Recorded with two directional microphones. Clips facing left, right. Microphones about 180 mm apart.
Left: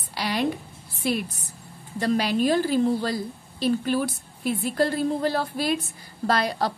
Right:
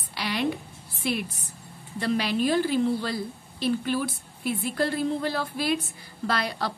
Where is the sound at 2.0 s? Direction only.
40° left (ahead or behind).